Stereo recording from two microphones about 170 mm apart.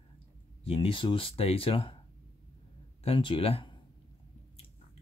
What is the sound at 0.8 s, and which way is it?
Speech, 30° left (ahead or behind).